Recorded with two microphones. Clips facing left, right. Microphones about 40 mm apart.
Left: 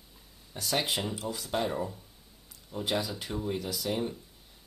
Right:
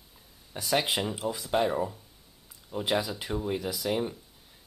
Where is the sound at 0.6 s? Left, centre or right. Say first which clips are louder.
Right 3 dB; centre.